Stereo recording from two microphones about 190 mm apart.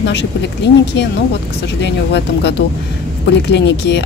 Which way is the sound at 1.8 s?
65° left (ahead or behind).